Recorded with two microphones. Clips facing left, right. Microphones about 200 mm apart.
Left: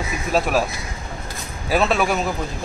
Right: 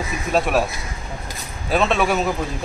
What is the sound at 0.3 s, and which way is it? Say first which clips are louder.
Speech: right 1 dB; centre (ahead or behind).